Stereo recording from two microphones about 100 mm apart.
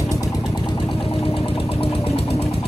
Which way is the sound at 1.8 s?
75° left (ahead or behind).